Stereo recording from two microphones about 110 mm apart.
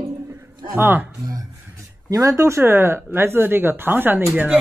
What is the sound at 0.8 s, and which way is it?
Speech, 20° right (ahead or behind).